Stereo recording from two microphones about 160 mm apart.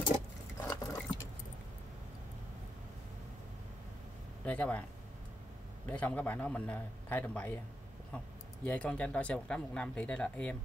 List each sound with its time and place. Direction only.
0.6 s keys jangling: 15° left (ahead or behind)
4.5 s speech: 10° left (ahead or behind)
5.9 s speech: 10° left (ahead or behind)
8.6 s speech: 5° left (ahead or behind)